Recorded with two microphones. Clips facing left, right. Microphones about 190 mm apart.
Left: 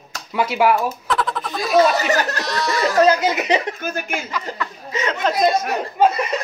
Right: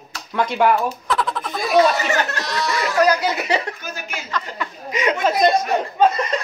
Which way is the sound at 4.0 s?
50° left (ahead or behind).